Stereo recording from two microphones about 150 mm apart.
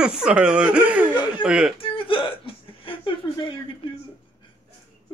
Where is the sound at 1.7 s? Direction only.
35° left (ahead or behind).